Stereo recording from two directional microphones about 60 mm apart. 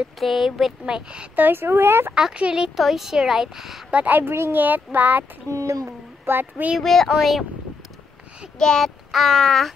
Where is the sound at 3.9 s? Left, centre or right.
Right.